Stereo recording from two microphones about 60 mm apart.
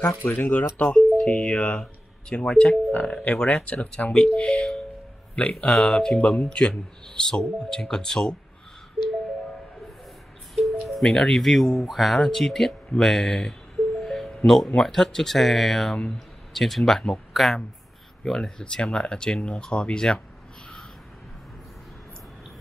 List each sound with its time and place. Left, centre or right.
0.2 s speech: left
0.8 s speech: centre
10.5 s speech: centre
17.3 s a sound: centre
18.2 s speech: centre